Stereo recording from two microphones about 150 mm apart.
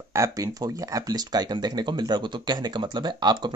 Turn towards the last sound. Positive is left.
turn(degrees=-30)  # may be behind; listen again after turning